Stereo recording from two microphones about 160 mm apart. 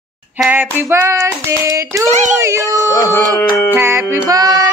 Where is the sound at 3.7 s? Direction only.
15° right (ahead or behind).